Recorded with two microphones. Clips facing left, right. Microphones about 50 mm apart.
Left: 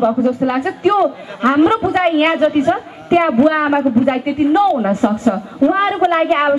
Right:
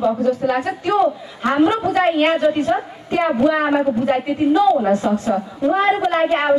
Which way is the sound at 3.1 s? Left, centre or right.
Left.